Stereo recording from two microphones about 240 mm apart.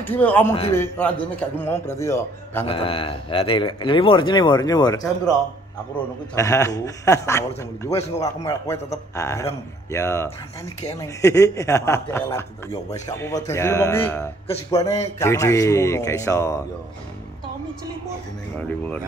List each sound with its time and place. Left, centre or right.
0.0 s speech: centre
2.6 s a man's voice: left
6.3 s speech: centre